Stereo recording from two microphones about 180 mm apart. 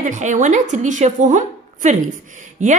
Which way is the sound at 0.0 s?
40° right (ahead or behind).